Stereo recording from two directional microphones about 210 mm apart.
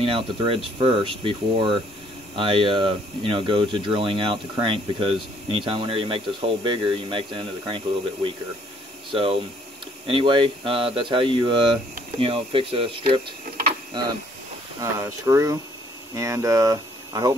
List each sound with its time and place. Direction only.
0.0 s speech: 25° right (ahead or behind)
14.8 s speech: 15° right (ahead or behind)